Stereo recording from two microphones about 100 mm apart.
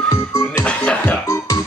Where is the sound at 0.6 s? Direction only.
10° left (ahead or behind).